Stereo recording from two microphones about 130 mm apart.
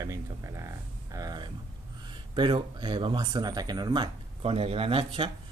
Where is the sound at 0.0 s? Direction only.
25° right (ahead or behind).